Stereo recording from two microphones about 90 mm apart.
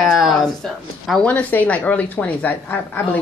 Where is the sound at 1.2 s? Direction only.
20° left (ahead or behind).